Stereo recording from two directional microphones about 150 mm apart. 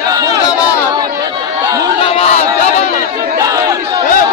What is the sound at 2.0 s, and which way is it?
Crowd, 40° left (ahead or behind).